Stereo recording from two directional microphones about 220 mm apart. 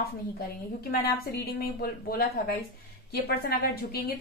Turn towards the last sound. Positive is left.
turn(degrees=45)  # may be behind; listen again after turning